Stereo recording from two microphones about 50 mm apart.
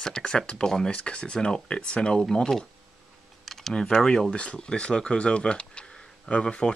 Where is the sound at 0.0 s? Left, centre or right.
Centre.